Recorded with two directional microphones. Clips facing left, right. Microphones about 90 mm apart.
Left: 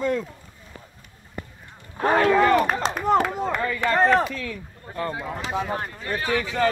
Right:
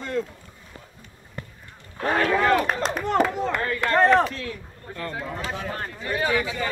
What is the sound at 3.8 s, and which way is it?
Speech, centre (ahead or behind).